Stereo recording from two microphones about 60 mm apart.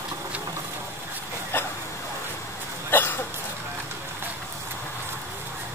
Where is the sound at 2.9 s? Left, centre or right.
Left.